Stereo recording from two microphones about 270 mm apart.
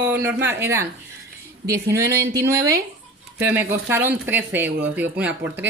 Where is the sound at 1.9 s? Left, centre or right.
Centre.